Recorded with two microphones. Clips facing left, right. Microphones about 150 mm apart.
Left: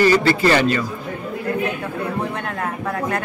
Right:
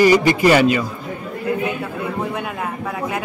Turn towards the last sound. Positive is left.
turn(degrees=-5)  # may be behind; listen again after turning